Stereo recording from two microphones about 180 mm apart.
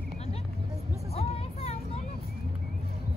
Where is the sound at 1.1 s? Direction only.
35° left (ahead or behind).